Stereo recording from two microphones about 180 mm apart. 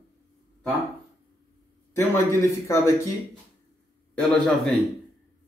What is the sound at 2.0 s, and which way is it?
Speech, 15° left (ahead or behind).